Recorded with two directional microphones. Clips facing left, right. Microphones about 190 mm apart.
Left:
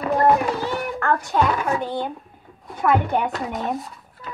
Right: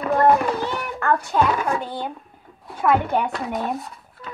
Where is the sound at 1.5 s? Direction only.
5° left (ahead or behind).